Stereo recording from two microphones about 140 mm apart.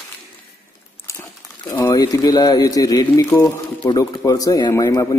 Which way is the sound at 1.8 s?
25° left (ahead or behind).